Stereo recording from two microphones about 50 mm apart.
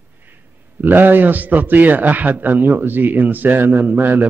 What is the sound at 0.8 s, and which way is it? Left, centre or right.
A man's voice, right.